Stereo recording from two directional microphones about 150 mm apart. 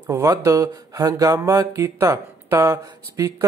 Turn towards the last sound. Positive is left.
turn(degrees=-20)  # may be behind; listen again after turning